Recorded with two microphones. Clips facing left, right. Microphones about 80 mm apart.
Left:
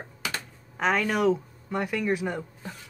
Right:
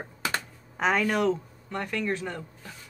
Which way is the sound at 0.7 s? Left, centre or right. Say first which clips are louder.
Even; centre.